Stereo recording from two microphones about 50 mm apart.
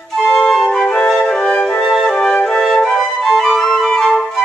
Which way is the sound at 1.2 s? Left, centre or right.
Centre.